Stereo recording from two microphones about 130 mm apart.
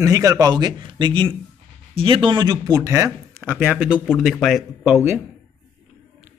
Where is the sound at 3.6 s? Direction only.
10° right (ahead or behind).